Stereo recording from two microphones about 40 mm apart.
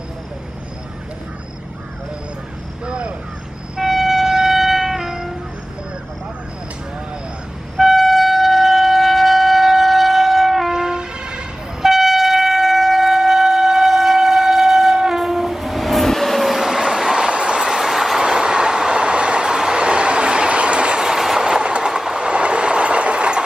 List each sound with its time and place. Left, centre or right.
2.8 s a sound: right
3.8 s wind instrument: centre
7.7 s shofar: centre
10.7 s train: centre
11.8 s shofar: centre
15.1 s train: centre
18.2 s train: centre
21.5 s train: right